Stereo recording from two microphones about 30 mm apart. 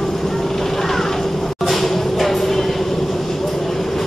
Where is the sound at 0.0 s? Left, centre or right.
Centre.